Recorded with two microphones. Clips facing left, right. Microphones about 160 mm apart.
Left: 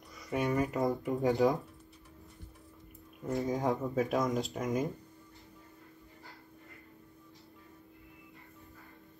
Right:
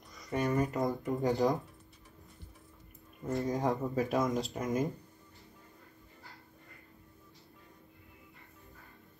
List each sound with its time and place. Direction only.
0.3 s speech: centre (ahead or behind)
3.3 s speech: centre (ahead or behind)